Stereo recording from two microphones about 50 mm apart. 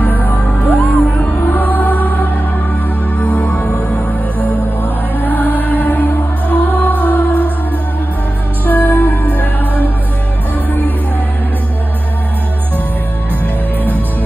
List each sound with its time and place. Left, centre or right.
0.0 s music: left
5.2 s music: left
8.6 s music: left